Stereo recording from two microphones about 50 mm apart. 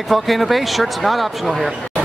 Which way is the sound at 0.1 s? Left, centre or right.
Centre.